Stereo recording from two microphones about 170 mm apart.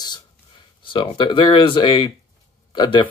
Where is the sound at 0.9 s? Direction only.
25° left (ahead or behind).